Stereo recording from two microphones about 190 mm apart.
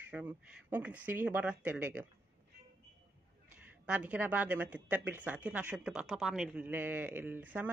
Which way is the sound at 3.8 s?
5° right (ahead or behind).